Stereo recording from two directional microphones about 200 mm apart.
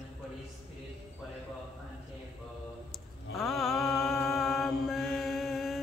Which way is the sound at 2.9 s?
Centre (ahead or behind).